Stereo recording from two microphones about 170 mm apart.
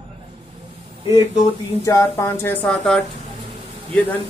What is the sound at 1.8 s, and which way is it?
Speech, 15° left (ahead or behind).